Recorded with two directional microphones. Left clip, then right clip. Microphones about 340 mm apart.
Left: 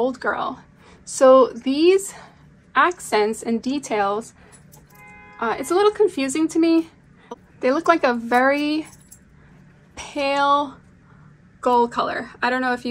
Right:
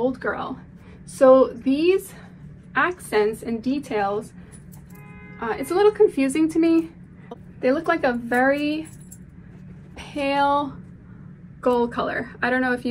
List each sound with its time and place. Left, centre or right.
0.0 s a woman's voice: centre
5.4 s speech: centre
9.9 s a woman's voice: centre